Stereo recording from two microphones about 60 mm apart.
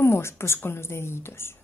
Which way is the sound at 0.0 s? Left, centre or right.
Left.